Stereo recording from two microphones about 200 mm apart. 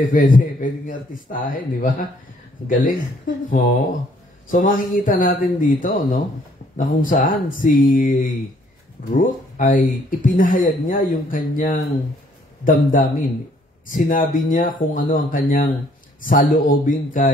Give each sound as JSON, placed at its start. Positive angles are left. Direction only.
{"t": 0.0, "sound": "speech", "side_deg": 40}
{"t": 4.5, "sound": "a man's voice", "side_deg": 40}